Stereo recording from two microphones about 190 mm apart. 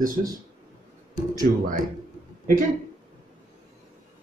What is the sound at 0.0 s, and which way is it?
Speech, 45° right (ahead or behind).